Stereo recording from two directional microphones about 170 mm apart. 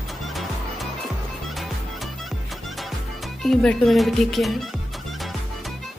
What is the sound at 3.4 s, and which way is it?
Speech, centre (ahead or behind).